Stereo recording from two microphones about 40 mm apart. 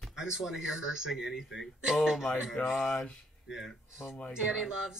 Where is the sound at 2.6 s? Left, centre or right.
Left.